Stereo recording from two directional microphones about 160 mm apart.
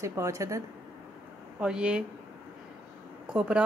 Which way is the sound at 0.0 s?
20° right (ahead or behind).